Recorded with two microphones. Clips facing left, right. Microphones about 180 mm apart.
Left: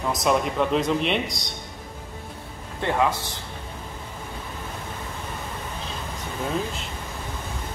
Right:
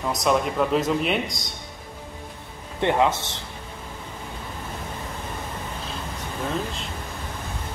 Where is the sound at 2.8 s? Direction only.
20° right (ahead or behind).